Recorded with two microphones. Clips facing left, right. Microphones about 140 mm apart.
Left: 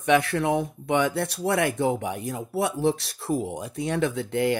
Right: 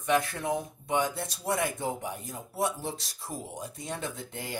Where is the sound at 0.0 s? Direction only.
75° left (ahead or behind).